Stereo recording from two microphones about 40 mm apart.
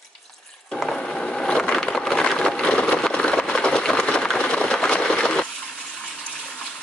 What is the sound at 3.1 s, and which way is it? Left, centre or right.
Vehicle, left.